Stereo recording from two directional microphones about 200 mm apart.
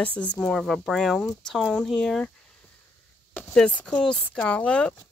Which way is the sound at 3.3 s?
5° left (ahead or behind).